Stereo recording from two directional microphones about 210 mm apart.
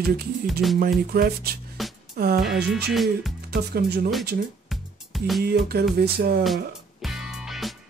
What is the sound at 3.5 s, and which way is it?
Music, 50° right (ahead or behind).